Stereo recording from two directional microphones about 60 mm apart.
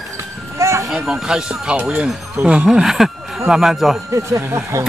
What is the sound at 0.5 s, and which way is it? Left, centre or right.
Music, right.